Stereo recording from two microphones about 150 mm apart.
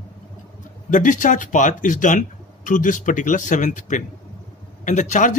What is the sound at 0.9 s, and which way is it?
A man's voice, 60° left (ahead or behind).